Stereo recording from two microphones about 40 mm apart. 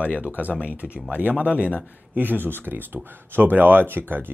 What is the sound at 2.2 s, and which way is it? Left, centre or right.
Speech, right.